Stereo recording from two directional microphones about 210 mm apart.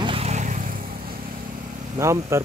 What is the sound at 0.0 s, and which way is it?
Vehicle, 25° right (ahead or behind).